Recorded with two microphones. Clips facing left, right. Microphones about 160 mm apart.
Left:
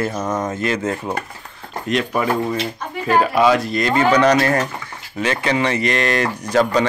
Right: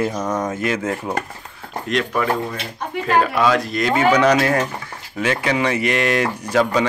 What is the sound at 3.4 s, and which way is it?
Speech, 5° left (ahead or behind).